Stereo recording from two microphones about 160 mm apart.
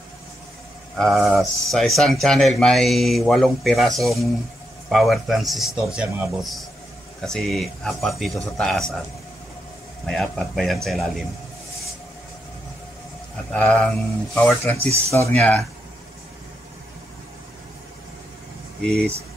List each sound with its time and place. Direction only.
0.9 s speech: centre (ahead or behind)
10.0 s speech: 5° left (ahead or behind)
13.5 s speech: 10° left (ahead or behind)